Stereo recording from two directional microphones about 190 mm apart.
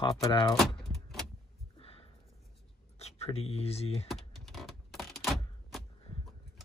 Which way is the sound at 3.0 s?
35° left (ahead or behind).